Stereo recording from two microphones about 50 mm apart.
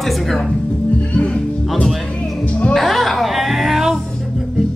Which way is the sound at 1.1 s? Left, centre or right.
Left.